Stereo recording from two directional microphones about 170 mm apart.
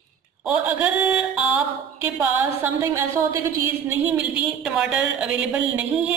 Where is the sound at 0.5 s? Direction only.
10° right (ahead or behind).